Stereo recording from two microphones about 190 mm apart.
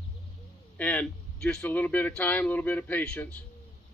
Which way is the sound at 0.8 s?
5° left (ahead or behind).